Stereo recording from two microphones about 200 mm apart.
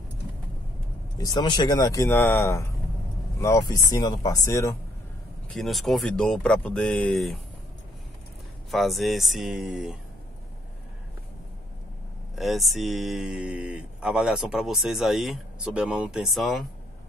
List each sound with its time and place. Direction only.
1.1 s speech: 20° left (ahead or behind)
5.5 s speech: centre (ahead or behind)
8.6 s speech: centre (ahead or behind)
12.4 s speech: centre (ahead or behind)